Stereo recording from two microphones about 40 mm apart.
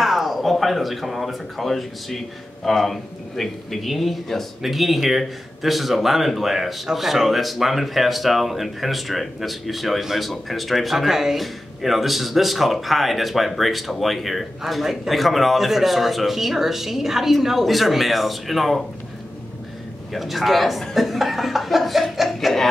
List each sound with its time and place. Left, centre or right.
0.0 s speech: centre
20.1 s speech: centre
20.9 s chuckle: centre